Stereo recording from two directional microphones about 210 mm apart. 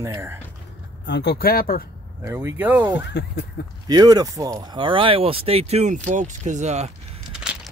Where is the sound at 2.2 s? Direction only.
10° right (ahead or behind).